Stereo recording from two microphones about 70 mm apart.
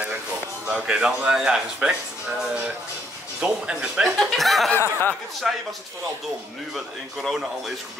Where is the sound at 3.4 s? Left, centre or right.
Centre.